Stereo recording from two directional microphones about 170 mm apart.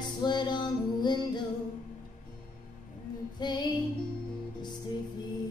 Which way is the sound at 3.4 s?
25° left (ahead or behind).